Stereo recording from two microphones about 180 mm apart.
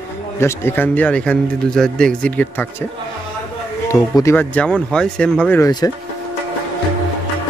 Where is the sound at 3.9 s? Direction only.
15° left (ahead or behind).